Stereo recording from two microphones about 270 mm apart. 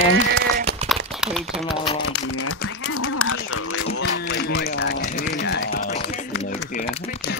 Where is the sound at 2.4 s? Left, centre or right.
Left.